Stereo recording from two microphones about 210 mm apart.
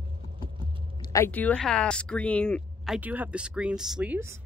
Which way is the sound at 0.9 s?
20° left (ahead or behind).